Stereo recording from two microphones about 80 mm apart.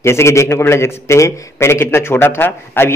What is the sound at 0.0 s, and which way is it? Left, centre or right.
A man's voice, left.